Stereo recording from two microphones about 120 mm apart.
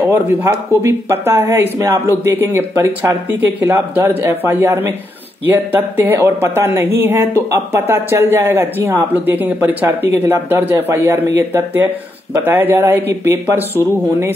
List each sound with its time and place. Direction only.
0.1 s a woman's voice: 25° right (ahead or behind)